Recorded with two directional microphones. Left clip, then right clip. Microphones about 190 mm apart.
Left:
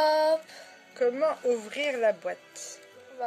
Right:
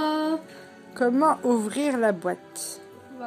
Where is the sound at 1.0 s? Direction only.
80° right.